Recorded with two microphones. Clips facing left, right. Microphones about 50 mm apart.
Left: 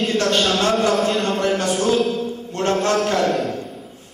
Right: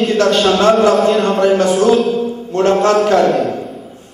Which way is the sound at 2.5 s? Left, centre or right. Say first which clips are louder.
Right 8 dB; centre.